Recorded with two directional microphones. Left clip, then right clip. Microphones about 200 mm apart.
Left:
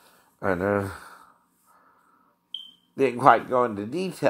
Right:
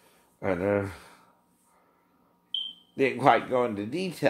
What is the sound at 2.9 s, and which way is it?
Speech, 20° left (ahead or behind).